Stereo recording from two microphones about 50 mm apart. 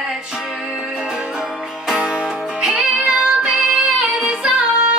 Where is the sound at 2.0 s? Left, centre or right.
Centre.